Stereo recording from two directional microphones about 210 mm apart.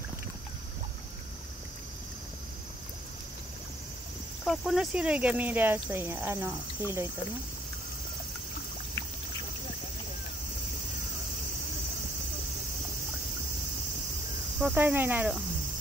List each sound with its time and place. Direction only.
4.5 s speech: centre (ahead or behind)
14.6 s speech: 10° right (ahead or behind)